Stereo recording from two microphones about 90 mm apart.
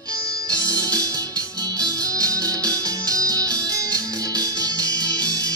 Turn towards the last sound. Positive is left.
turn(degrees=-45)  # may be behind; listen again after turning